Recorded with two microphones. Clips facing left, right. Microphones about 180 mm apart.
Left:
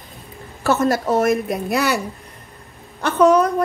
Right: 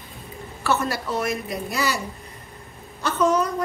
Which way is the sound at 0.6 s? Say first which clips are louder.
Left 7 dB; 45° left (ahead or behind).